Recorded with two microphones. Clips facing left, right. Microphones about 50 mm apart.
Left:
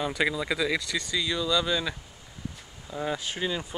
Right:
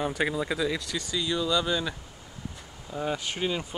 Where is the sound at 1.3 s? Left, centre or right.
Right.